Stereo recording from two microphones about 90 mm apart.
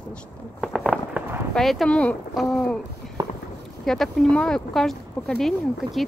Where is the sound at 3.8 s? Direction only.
5° left (ahead or behind).